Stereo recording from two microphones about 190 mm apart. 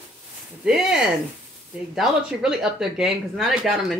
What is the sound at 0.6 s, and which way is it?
Speech, centre (ahead or behind).